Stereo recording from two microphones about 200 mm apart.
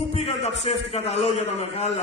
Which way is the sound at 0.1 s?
30° left (ahead or behind).